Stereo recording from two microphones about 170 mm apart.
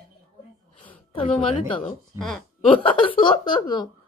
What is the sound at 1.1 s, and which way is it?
Speech, 30° left (ahead or behind).